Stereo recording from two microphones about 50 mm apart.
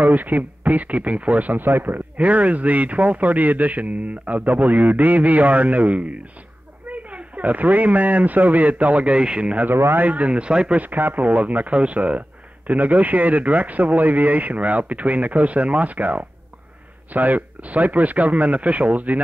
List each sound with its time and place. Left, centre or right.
0.0 s speech: right; by 10.8 s centre
10.8 s speech: right